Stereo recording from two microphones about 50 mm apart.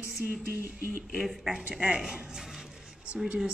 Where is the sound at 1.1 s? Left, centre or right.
Centre.